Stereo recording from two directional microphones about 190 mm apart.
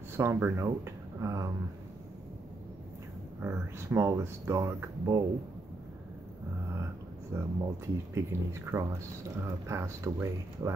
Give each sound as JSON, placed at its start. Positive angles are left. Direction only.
{"t": 0.2, "sound": "speech", "side_deg": -15}
{"t": 3.4, "sound": "speech", "side_deg": -15}
{"t": 7.3, "sound": "speech", "side_deg": -15}